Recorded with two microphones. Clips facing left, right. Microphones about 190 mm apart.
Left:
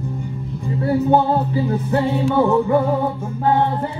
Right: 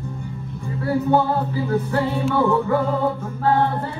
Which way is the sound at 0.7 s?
25° left (ahead or behind).